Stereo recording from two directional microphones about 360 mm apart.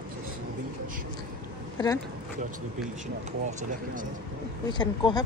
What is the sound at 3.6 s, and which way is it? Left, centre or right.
Speech, right.